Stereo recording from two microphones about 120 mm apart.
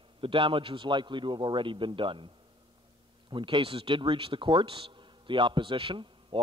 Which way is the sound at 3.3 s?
45° right (ahead or behind).